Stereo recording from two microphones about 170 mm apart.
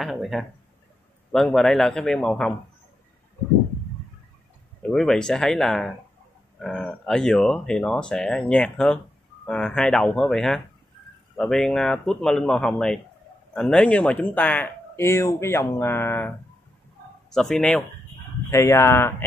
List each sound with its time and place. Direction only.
0.0 s speech: centre (ahead or behind)
4.8 s speech: 5° left (ahead or behind)
18.5 s speech: 15° left (ahead or behind)